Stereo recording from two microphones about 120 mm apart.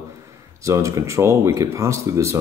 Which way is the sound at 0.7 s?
25° right (ahead or behind).